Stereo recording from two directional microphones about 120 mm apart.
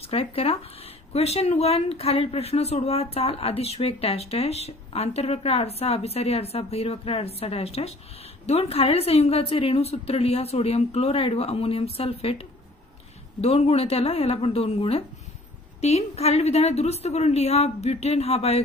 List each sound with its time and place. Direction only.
0.0 s speech: 55° left (ahead or behind)